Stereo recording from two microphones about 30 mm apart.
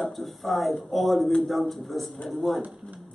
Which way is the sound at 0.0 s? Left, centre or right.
Centre.